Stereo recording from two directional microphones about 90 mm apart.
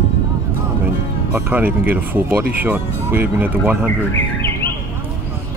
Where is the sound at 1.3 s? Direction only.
20° right (ahead or behind).